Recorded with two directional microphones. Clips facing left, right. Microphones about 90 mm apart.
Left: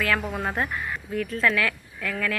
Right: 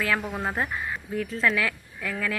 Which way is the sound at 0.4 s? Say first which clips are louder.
Left 1 dB; 5° right (ahead or behind).